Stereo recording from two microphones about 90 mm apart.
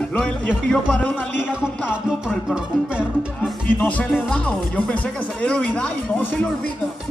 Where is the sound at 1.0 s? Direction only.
20° left (ahead or behind).